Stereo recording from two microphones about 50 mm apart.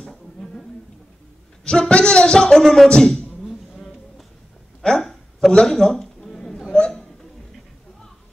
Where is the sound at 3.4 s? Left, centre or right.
Centre.